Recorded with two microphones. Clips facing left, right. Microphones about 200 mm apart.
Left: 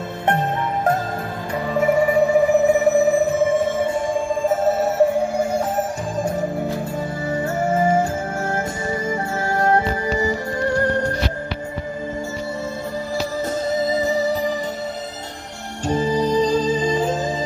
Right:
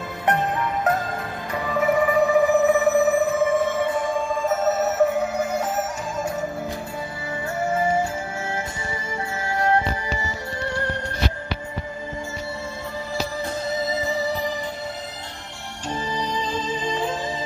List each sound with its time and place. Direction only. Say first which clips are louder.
1.8 s music: left 3 dB; 30° left (ahead or behind)
7.2 s music: left 4 dB; 45° left (ahead or behind)
9.1 s music: left 5 dB; 45° left (ahead or behind)
13.8 s music: left 5 dB; 45° left (ahead or behind)
15.9 s music: left 9 dB; 45° left (ahead or behind)